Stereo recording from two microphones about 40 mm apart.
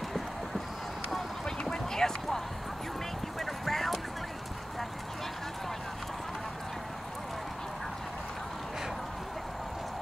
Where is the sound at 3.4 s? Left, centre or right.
Centre.